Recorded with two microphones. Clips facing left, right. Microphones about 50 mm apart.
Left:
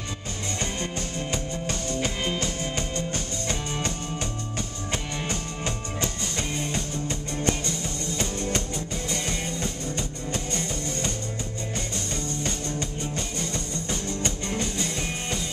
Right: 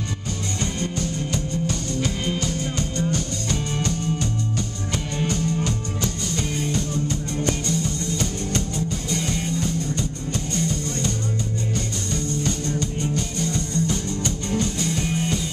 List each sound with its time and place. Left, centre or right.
0.6 s music: left
3.8 s music: left
8.2 s music: left
13.1 s music: left